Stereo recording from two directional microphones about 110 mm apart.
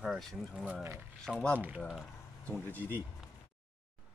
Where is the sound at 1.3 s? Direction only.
10° right (ahead or behind).